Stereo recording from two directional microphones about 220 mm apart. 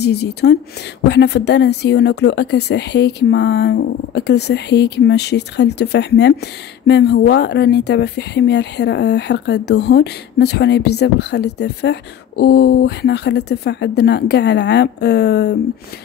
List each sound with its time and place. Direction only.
0.0 s speech: 50° left (ahead or behind)